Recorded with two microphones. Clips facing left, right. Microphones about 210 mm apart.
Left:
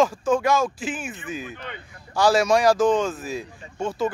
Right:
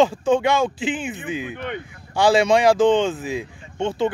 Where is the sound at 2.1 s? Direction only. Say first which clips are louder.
Right 2 dB; 25° right (ahead or behind).